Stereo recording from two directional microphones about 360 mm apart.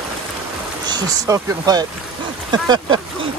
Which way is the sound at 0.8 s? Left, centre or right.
Centre.